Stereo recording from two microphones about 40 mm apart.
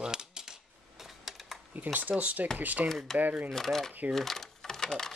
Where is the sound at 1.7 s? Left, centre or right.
Right.